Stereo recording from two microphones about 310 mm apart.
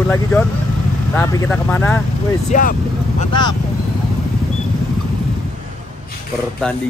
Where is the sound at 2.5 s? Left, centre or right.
Left.